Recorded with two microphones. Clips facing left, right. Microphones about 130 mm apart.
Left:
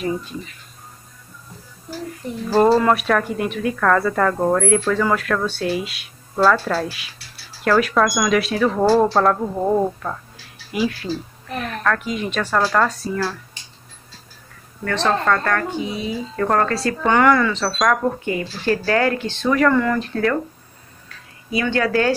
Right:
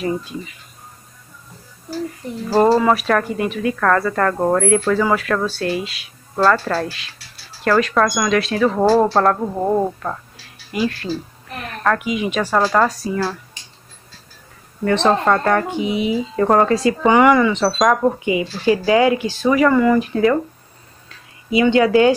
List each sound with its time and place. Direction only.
0.0 s speech: centre (ahead or behind)
2.5 s speech: 10° right (ahead or behind)
11.8 s speech: 10° right (ahead or behind)
14.9 s speech: 20° right (ahead or behind)
21.5 s speech: 20° right (ahead or behind)